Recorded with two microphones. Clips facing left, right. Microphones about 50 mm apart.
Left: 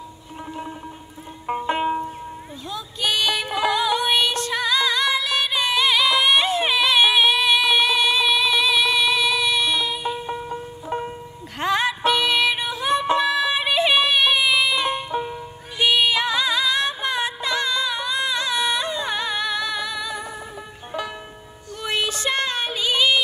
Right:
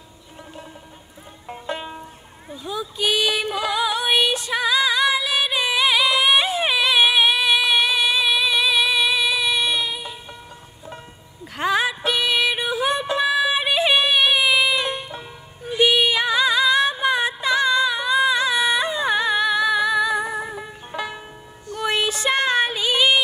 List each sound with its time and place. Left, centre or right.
1.5 s music: left
2.6 s music: centre
10.2 s music: left
11.5 s music: centre